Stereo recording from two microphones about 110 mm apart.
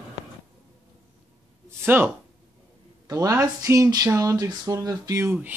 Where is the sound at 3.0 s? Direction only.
30° right (ahead or behind).